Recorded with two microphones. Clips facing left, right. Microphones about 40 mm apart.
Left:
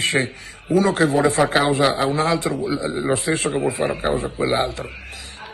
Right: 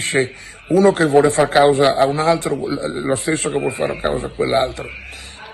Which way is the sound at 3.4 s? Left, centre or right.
Right.